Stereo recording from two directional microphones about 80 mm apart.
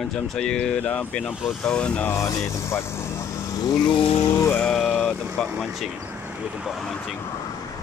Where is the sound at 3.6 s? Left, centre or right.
Left.